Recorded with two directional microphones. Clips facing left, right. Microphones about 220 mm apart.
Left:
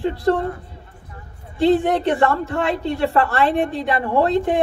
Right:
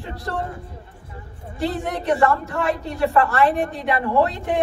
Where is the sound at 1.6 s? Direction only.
30° left (ahead or behind).